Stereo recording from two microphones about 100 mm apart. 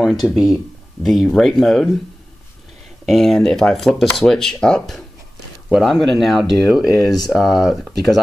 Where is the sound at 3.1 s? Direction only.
5° left (ahead or behind).